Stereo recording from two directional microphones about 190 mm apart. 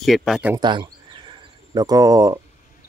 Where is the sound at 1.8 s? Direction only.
20° right (ahead or behind).